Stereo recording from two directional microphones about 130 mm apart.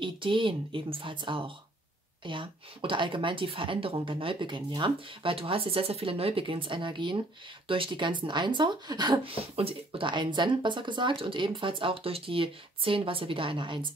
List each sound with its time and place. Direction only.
0.0 s speech: 40° right (ahead or behind)